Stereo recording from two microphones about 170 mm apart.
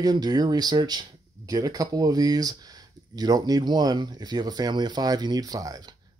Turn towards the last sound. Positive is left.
turn(degrees=-20)  # may be behind; listen again after turning